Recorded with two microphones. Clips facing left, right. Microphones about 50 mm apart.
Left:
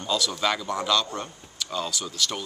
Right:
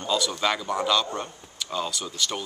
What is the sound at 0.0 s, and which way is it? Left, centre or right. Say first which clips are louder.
Speech: right 1 dB; centre.